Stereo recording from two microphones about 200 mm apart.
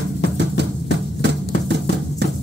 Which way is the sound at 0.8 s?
60° right (ahead or behind).